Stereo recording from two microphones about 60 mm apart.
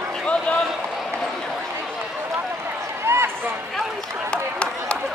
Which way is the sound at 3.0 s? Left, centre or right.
Right.